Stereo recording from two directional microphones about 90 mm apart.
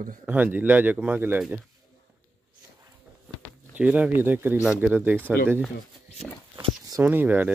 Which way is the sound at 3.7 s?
15° right (ahead or behind).